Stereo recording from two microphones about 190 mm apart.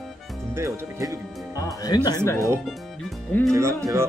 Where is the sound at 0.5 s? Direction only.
15° right (ahead or behind).